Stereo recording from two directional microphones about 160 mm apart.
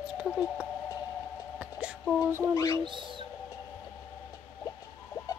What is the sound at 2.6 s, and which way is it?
Speech, 20° left (ahead or behind).